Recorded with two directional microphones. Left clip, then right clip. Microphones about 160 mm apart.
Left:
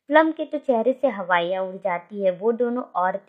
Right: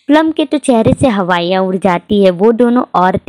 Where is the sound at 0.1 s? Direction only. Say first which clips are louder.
Right 8 dB; 40° right (ahead or behind).